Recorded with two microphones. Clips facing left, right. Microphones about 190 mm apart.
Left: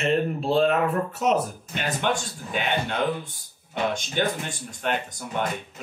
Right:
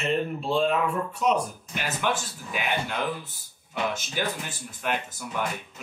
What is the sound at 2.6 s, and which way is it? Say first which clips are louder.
Speech: left 3 dB; 25° left (ahead or behind).